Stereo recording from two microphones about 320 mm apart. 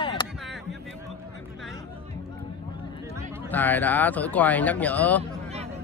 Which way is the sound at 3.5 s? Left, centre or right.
Centre.